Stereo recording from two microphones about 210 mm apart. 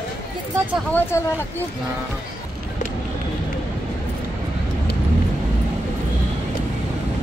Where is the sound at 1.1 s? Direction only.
15° left (ahead or behind).